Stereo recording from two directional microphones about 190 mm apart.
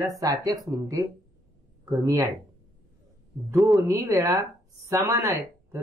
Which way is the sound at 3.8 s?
15° right (ahead or behind).